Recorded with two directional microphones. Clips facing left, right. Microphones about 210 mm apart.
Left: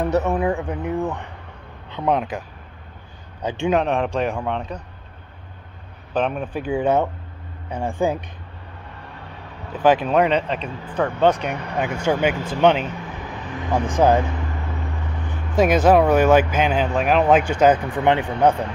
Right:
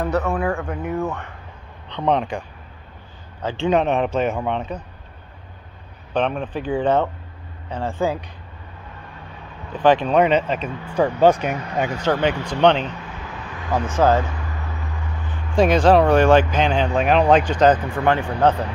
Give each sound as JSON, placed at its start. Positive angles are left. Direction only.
{"t": 0.0, "sound": "speech", "side_deg": 20}
{"t": 3.4, "sound": "speech", "side_deg": 15}
{"t": 3.7, "sound": "speech", "side_deg": 0}
{"t": 6.1, "sound": "speech", "side_deg": 5}
{"t": 9.8, "sound": "speech", "side_deg": 5}
{"t": 11.9, "sound": "speech", "side_deg": 10}
{"t": 15.6, "sound": "speech", "side_deg": 5}